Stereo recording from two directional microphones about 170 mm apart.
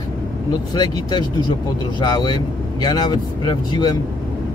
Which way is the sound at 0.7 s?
25° left (ahead or behind).